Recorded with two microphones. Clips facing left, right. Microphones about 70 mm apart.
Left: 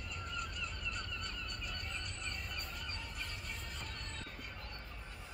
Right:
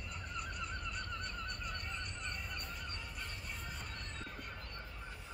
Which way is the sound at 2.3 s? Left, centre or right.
Left.